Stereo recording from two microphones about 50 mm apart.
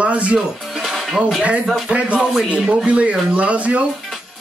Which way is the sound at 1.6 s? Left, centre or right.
Centre.